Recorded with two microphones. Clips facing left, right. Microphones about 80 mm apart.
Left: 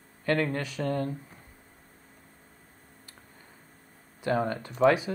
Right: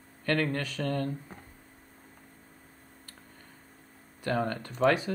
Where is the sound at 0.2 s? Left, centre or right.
Centre.